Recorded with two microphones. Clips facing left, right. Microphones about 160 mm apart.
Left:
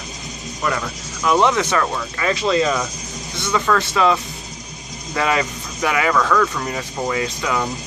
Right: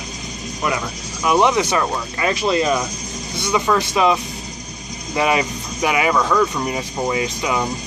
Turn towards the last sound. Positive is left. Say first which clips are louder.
# right 1 dB
turn(degrees=-15)  # may be behind; listen again after turning